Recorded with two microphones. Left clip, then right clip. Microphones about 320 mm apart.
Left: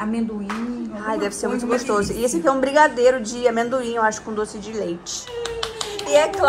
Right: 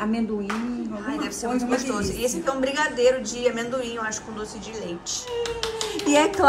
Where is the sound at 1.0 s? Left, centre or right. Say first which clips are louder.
Left 7 dB; centre.